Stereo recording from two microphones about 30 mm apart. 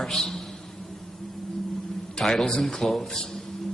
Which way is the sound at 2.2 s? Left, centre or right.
Left.